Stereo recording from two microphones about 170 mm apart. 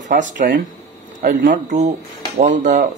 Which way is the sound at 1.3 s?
85° right.